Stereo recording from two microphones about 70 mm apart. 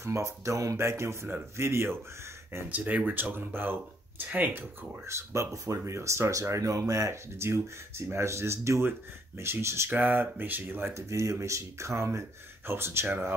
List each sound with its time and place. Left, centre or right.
0.0 s speech: right
0.8 s a man's voice: right
2.7 s speech: right
5.0 s a man's voice: right
9.8 s speech: right
10.9 s speech: right